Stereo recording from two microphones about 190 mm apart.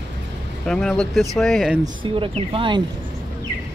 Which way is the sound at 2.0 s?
30° right (ahead or behind).